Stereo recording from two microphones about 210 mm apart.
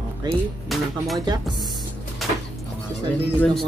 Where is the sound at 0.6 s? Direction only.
Centre (ahead or behind).